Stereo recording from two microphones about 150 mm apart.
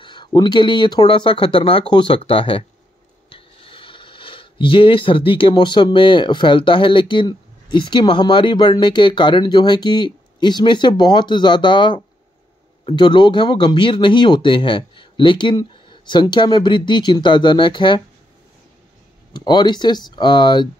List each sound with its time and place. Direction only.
0.0 s speech: 30° left (ahead or behind)
19.3 s speech: 30° left (ahead or behind)